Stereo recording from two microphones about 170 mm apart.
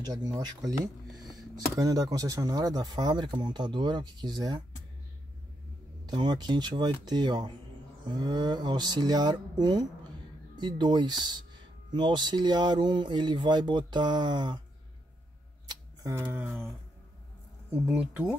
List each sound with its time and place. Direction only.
0.0 s speech: 25° right (ahead or behind)
6.0 s speech: 25° right (ahead or behind)
15.7 s scissors: 20° right (ahead or behind)
16.3 s speech: 5° right (ahead or behind)